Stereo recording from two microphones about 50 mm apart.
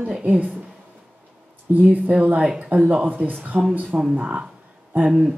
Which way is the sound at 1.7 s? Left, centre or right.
Right.